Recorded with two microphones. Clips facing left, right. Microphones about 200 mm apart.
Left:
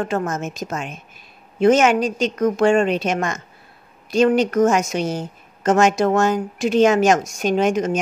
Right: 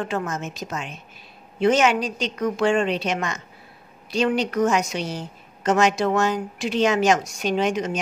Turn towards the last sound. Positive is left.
turn(degrees=45)  # may be behind; listen again after turning